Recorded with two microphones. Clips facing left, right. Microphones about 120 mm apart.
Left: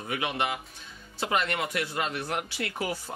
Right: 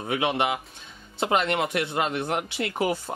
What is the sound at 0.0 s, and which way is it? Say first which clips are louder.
Speech: right 5 dB; 25° right (ahead or behind).